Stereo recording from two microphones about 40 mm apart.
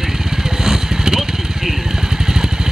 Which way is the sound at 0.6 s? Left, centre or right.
Centre.